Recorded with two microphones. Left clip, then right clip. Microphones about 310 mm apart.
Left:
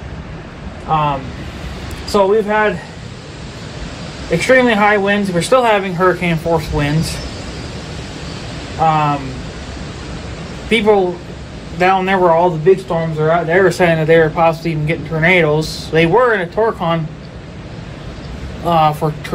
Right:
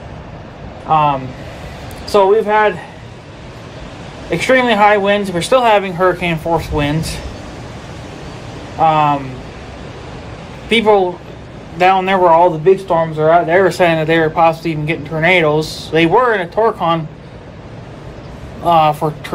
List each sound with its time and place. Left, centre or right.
0.8 s speech: centre
4.3 s speech: centre
8.7 s speech: centre
10.7 s speech: centre
18.7 s speech: centre